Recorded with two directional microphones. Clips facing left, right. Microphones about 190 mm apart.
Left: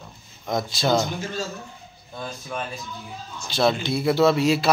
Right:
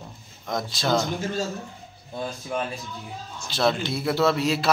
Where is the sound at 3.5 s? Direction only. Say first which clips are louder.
Left 2 dB; centre (ahead or behind).